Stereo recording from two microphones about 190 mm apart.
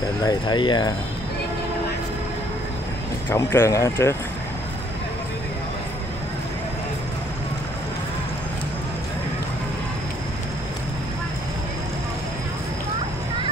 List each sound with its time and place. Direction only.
0.2 s speech: 20° left (ahead or behind)
3.3 s speech: 15° left (ahead or behind)